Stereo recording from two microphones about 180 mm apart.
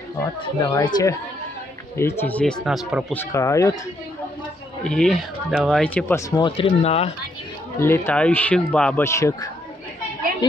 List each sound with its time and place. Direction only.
0.1 s speech: 20° left (ahead or behind)
2.0 s speech: 15° left (ahead or behind)
3.2 s speech: 15° left (ahead or behind)
4.8 s speech: 5° left (ahead or behind)
6.4 s speech: 30° left (ahead or behind)
7.8 s speech: 15° left (ahead or behind)
9.0 s speech: 15° left (ahead or behind)